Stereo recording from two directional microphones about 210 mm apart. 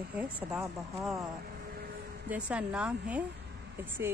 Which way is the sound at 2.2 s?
5° right (ahead or behind).